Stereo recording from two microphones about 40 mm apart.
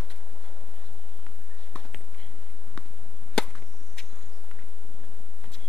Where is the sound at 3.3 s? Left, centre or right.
Centre.